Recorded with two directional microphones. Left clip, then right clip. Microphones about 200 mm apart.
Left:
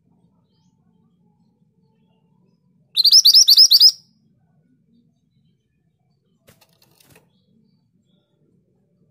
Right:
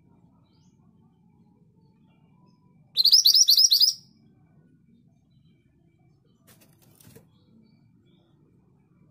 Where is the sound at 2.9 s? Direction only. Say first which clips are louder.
Left 7 dB; 30° left (ahead or behind).